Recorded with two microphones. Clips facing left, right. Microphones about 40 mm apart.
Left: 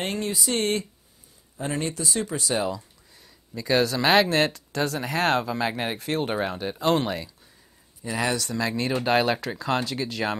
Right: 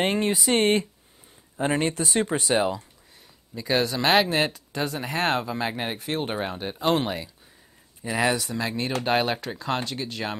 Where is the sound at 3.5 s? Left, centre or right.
Centre.